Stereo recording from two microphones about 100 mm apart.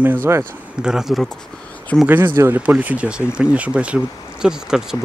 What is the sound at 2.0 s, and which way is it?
Speech, 20° right (ahead or behind).